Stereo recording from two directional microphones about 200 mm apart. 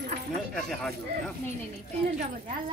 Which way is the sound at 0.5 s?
5° left (ahead or behind).